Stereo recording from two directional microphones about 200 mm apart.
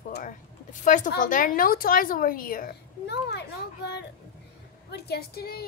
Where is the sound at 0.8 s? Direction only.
40° left (ahead or behind).